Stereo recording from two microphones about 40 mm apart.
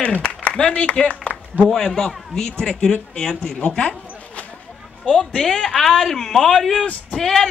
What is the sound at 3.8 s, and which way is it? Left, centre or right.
Zipper, left.